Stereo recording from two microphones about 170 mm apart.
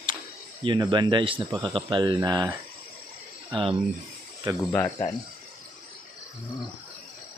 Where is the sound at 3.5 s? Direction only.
30° right (ahead or behind).